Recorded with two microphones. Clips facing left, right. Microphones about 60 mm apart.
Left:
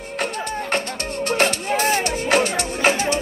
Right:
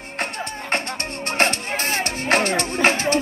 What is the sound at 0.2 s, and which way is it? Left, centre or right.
Music, right.